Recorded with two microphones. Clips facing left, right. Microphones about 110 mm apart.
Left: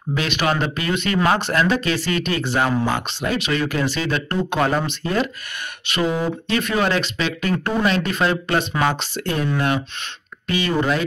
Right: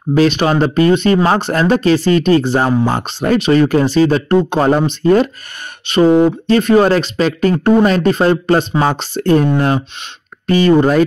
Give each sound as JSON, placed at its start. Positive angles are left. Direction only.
{"t": 0.1, "sound": "speech", "side_deg": -35}